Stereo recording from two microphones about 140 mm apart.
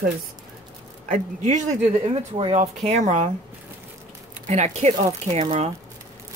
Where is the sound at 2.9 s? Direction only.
55° right (ahead or behind).